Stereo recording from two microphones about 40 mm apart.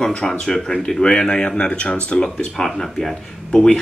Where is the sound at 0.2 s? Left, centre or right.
Centre.